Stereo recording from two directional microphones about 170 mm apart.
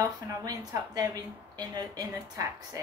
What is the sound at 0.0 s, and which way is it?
A woman's voice, 20° right (ahead or behind).